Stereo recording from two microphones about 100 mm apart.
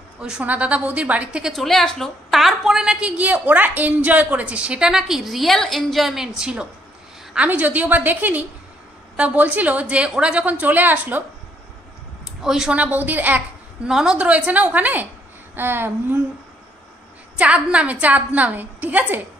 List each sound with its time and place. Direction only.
0.2 s a woman's voice: 10° right (ahead or behind)
1.5 s a woman's voice: centre (ahead or behind); by 11.2 s 20° right (ahead or behind)
12.3 s a woman's voice: 5° right (ahead or behind)
13.8 s a woman's voice: 5° right (ahead or behind)
15.5 s a sound: 20° right (ahead or behind)
17.4 s a woman's voice: 10° right (ahead or behind)